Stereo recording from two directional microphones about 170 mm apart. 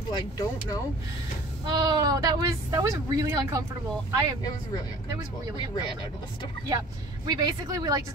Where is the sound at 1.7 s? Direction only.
20° right (ahead or behind).